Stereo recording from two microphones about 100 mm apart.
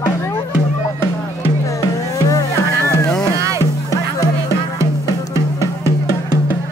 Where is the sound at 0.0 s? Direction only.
25° left (ahead or behind).